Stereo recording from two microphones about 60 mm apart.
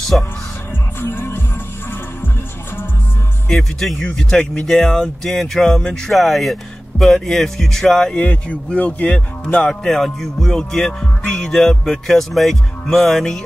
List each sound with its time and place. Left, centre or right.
0.1 s music: centre
1.0 s music: left
3.4 s music: centre
4.6 s speech: centre
8.2 s speech: left
9.6 s music: centre
11.3 s speech: centre